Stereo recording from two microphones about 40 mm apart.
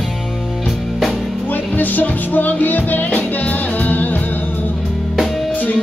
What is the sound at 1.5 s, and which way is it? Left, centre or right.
Music, left.